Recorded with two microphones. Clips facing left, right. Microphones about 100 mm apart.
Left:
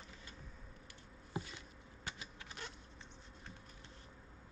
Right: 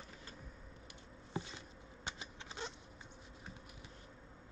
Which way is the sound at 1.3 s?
25° right (ahead or behind).